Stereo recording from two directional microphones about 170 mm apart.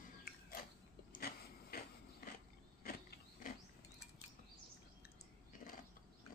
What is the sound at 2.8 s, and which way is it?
Mechanisms, 60° left (ahead or behind).